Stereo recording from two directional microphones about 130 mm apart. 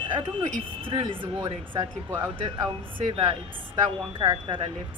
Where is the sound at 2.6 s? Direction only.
35° right (ahead or behind).